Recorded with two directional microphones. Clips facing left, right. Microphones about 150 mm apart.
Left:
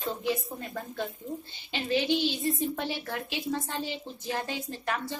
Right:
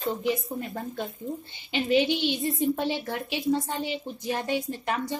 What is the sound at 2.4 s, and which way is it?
A woman's voice, 20° right (ahead or behind).